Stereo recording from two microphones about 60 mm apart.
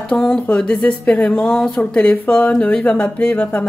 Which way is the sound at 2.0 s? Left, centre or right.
Left.